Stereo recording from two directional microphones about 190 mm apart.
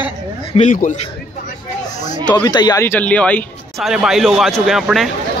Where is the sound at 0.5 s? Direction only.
35° left (ahead or behind).